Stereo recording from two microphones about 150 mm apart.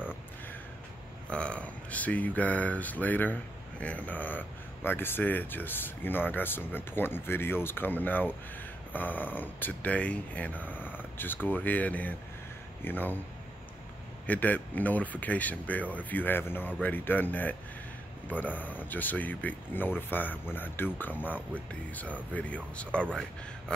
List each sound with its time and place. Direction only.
1.3 s speech: 5° left (ahead or behind)
14.2 s speech: 10° left (ahead or behind)